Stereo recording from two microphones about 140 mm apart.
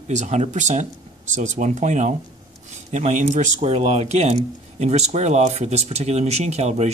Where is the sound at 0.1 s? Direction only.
55° right (ahead or behind).